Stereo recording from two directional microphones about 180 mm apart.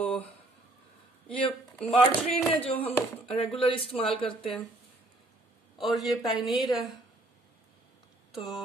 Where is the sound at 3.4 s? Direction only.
30° left (ahead or behind).